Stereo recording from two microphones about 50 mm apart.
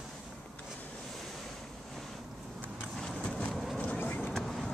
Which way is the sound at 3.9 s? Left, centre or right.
Left.